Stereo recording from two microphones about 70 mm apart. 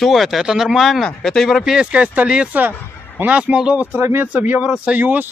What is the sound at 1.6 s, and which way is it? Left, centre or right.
Speech, centre.